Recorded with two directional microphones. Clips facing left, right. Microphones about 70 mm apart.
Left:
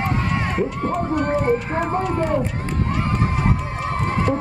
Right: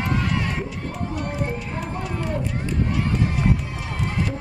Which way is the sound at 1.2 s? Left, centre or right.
Left.